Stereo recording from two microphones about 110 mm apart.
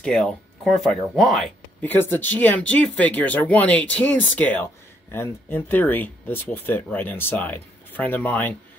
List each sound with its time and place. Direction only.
0.0 s speech: 5° left (ahead or behind)
1.8 s speech: 20° left (ahead or behind)